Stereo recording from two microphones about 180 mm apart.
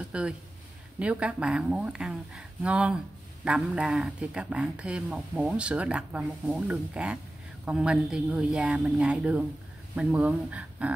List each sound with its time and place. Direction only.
0.1 s speech: 5° right (ahead or behind)